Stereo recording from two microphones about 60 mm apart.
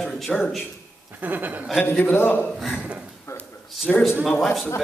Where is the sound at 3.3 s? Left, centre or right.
Left.